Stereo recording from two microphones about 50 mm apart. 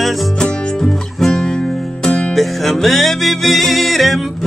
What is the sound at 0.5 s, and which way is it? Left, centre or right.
Music, left.